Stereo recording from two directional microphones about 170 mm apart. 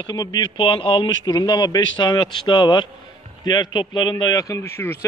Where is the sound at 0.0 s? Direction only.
25° left (ahead or behind).